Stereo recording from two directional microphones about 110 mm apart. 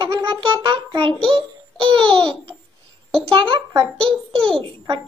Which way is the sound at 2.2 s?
5° left (ahead or behind).